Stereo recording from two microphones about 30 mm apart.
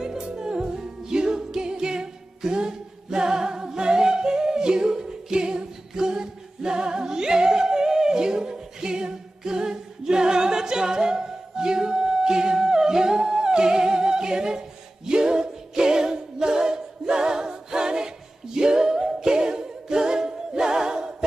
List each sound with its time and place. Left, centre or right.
0.0 s music: right